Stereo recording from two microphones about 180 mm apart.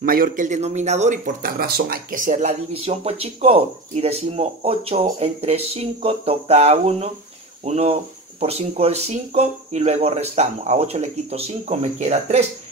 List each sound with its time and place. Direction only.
0.0 s speech: 50° right (ahead or behind)